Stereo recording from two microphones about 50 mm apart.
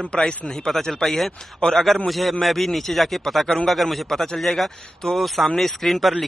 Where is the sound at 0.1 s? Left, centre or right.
Centre.